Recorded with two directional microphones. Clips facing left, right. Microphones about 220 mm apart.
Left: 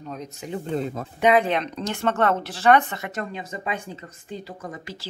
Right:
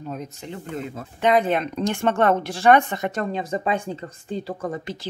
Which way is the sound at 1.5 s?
10° right (ahead or behind).